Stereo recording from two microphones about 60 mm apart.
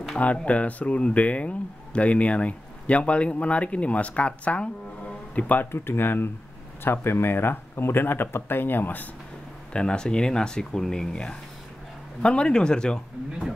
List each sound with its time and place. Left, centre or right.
0.2 s speech: left
9.7 s speech: centre